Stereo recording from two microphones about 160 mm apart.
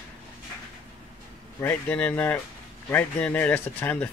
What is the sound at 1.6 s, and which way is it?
Speech, 10° left (ahead or behind).